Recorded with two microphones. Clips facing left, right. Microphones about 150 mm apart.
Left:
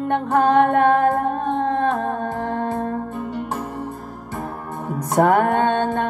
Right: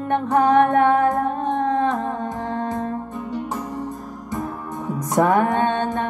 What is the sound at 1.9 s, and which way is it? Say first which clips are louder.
Music: left 2 dB; 60° left (ahead or behind).